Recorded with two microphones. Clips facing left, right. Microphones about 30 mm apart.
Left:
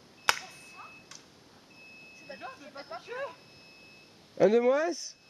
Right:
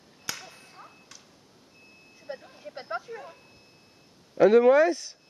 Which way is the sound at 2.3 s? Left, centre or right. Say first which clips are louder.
Right 7 dB; right.